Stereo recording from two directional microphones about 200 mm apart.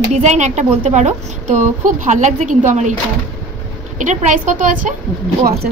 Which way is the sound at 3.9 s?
40° right (ahead or behind).